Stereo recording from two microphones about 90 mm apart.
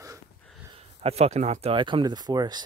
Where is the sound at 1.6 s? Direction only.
70° right (ahead or behind); by 2.6 s 50° right (ahead or behind).